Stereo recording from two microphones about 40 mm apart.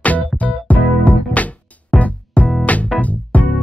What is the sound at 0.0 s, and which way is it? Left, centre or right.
Music, left.